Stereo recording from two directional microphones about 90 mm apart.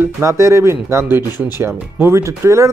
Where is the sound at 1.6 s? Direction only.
30° right (ahead or behind).